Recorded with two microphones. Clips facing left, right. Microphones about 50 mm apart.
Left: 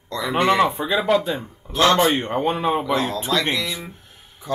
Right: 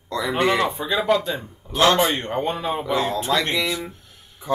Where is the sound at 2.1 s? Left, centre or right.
Centre.